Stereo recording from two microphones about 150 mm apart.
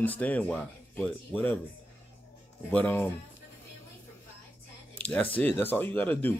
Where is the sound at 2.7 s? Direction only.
10° left (ahead or behind).